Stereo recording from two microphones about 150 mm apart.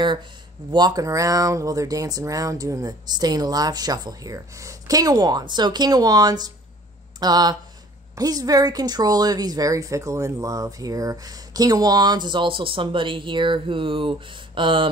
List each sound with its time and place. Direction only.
0.7 s a woman's voice: 30° right (ahead or behind)